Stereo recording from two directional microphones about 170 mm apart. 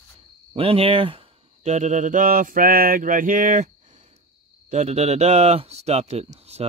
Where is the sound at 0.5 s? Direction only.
30° right (ahead or behind).